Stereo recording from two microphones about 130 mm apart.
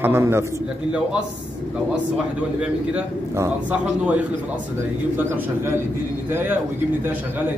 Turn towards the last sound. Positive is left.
turn(degrees=-15)  # may be behind; listen again after turning